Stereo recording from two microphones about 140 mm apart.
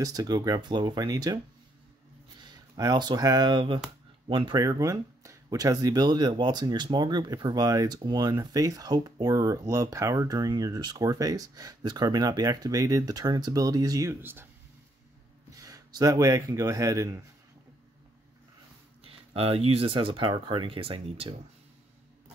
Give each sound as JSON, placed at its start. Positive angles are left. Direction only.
{"t": 0.0, "sound": "speech", "side_deg": -25}
{"t": 2.5, "sound": "speech", "side_deg": -30}
{"t": 4.6, "sound": "speech", "side_deg": -25}
{"t": 15.5, "sound": "speech", "side_deg": -25}
{"t": 19.0, "sound": "speech", "side_deg": -45}